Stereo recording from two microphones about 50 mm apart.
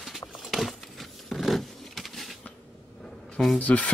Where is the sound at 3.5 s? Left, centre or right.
Left.